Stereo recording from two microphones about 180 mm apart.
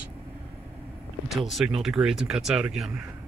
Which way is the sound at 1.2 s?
Centre (ahead or behind).